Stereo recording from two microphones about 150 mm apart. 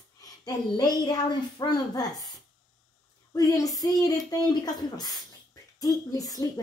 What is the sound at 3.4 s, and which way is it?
A woman's voice, 25° left (ahead or behind).